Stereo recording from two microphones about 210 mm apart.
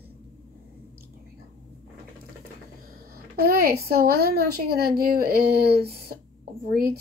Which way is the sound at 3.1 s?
45° right (ahead or behind).